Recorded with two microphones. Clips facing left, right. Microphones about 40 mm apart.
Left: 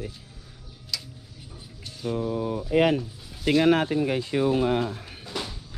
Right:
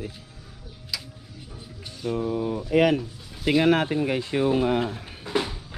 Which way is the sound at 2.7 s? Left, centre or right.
Right.